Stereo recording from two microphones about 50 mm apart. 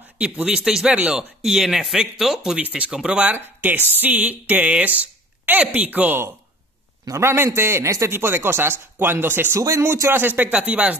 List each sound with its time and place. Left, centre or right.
0.2 s speech: centre
2.6 s speech: right
2.9 s speech: centre
3.6 s speech: right
7.1 s a man's voice: right
8.1 s speech: right
9.6 s speech: right
10.1 s speech: right
10.6 s speech: right